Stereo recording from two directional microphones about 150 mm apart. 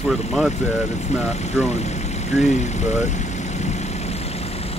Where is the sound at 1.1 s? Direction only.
45° left (ahead or behind).